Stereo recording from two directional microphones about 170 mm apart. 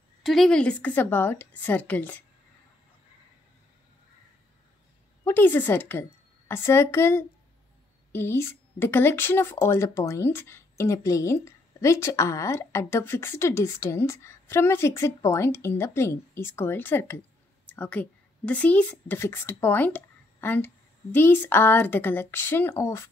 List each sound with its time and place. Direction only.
0.2 s a woman's voice: centre (ahead or behind)
5.2 s a woman's voice: 10° left (ahead or behind)